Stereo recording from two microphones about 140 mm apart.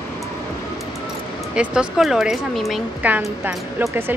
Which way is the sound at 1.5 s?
5° right (ahead or behind).